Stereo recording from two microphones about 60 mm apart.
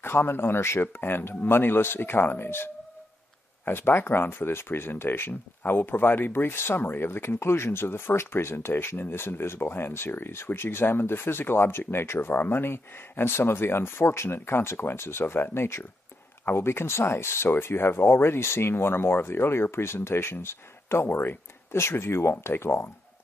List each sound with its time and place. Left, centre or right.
0.0 s speech: left